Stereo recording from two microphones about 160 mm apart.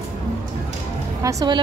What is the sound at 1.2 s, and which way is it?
Speech, 20° right (ahead or behind).